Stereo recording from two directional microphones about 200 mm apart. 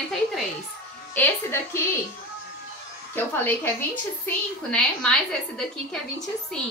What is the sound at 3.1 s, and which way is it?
A woman's voice, 10° left (ahead or behind).